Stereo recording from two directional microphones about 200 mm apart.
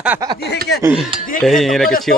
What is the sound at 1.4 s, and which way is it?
Speech, centre (ahead or behind).